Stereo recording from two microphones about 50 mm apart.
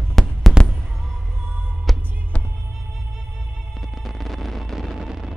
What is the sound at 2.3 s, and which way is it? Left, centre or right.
Music, left.